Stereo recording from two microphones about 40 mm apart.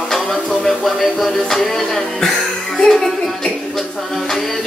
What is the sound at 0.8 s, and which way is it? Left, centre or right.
Music, centre.